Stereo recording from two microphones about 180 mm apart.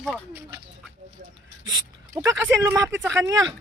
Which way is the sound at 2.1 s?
15° right (ahead or behind).